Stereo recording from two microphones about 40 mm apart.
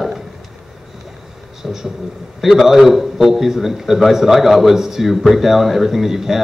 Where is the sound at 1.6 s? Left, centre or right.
Centre.